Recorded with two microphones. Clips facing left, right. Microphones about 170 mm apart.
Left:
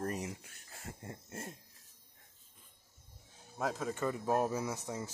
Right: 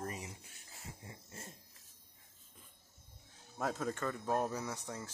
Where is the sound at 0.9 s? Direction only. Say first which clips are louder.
Left 6 dB; 55° left (ahead or behind).